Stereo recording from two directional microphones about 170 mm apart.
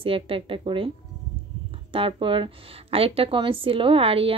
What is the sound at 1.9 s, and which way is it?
A woman's voice, 30° right (ahead or behind).